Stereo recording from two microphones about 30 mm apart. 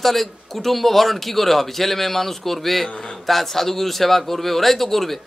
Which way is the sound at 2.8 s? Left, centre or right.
Left.